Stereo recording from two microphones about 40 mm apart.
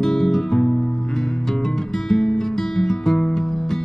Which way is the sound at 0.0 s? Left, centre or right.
Centre.